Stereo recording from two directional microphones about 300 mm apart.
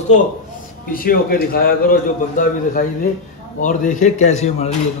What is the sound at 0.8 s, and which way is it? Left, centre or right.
A man's voice, left.